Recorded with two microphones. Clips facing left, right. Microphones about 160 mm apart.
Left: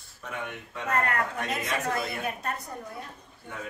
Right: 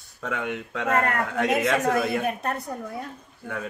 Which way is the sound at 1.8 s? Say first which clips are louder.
Right 7 dB; 55° right (ahead or behind).